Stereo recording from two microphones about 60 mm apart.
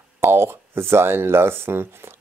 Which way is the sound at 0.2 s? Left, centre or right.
Right.